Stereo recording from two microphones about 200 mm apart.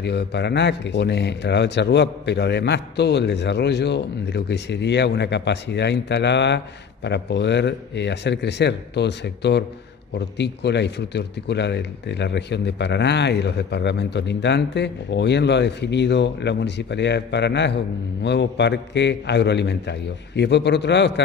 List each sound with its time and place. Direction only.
0.0 s speech: 55° left (ahead or behind)